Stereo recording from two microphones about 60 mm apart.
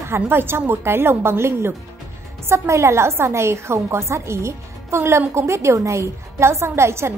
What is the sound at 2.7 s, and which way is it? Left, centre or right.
A woman's voice, right.